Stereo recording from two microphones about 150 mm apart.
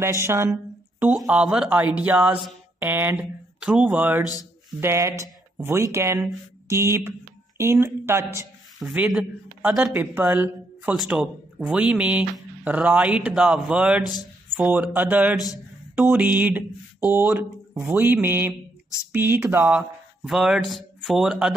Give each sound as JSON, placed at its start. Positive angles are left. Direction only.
{"t": 0.0, "sound": "speech", "side_deg": -15}
{"t": 8.7, "sound": "speech", "side_deg": 0}
{"t": 15.3, "sound": "a man's voice", "side_deg": 25}
{"t": 16.0, "sound": "a man's voice", "side_deg": -10}